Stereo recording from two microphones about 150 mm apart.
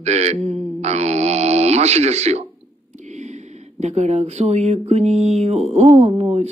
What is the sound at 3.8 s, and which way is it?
Speech, 50° right (ahead or behind).